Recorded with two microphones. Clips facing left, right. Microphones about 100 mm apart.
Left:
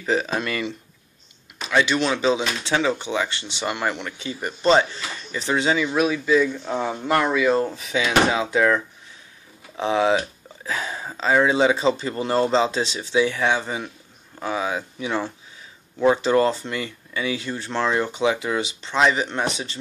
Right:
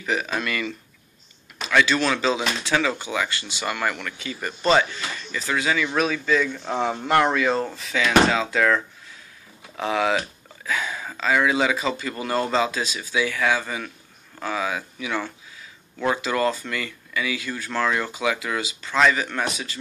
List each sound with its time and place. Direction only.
0.0 s speech: 30° left (ahead or behind)
5.9 s speech: 10° left (ahead or behind)
6.6 s speech: centre (ahead or behind)
7.7 s speech: 20° left (ahead or behind)